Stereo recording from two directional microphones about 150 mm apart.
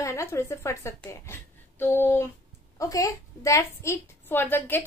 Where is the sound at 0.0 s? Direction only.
20° left (ahead or behind).